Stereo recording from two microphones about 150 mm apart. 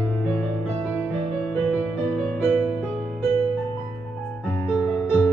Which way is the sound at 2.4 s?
10° right (ahead or behind).